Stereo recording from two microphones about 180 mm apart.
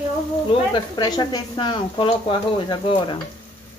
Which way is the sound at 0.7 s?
25° left (ahead or behind).